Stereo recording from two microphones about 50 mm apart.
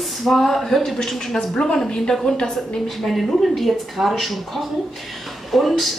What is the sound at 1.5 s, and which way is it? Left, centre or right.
A woman's voice, centre.